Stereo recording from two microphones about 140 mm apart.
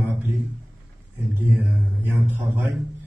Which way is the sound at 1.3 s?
15° right (ahead or behind).